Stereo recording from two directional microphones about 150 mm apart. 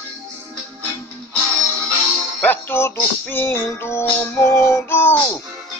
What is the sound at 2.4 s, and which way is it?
Music, 15° left (ahead or behind).